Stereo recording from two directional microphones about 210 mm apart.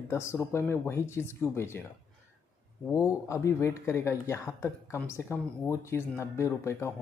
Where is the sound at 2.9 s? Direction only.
15° left (ahead or behind).